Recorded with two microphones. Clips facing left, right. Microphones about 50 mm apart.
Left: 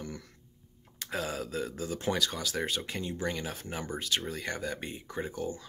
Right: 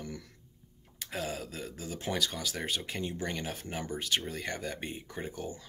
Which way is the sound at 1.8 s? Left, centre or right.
Centre.